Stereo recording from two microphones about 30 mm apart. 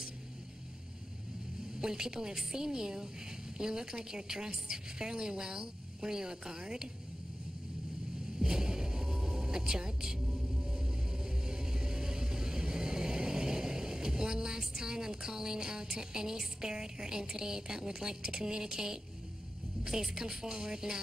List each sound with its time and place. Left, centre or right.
1.8 s a woman's voice: right
8.4 s music: right
11.4 s vehicle: right
19.9 s a woman's voice: centre